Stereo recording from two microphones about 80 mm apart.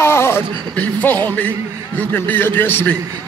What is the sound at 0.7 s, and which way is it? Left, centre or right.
A man's voice, centre.